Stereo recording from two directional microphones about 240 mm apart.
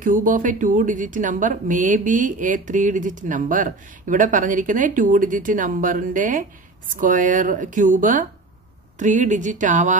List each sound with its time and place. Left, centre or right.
0.0 s a woman's voice: right